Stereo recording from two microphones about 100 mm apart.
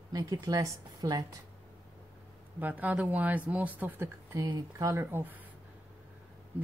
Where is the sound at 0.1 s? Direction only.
35° right (ahead or behind).